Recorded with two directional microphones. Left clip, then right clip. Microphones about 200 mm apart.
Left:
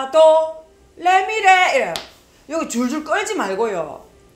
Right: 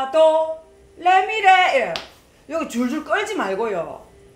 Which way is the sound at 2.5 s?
20° left (ahead or behind).